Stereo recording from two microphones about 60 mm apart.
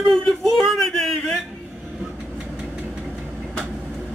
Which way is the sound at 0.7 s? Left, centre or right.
Centre.